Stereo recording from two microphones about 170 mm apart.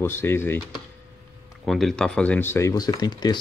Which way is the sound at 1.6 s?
Centre (ahead or behind).